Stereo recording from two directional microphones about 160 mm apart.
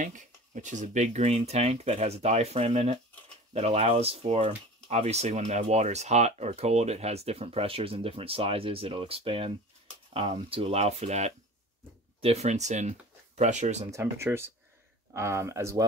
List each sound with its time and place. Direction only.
0.0 s speech: 50° right (ahead or behind)
13.9 s speech: 15° right (ahead or behind)